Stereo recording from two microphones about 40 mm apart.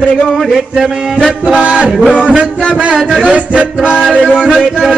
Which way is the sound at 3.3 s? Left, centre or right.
Right.